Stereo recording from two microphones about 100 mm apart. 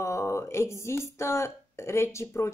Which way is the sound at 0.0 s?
30° left (ahead or behind).